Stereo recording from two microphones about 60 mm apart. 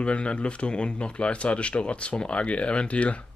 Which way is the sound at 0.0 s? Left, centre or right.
Centre.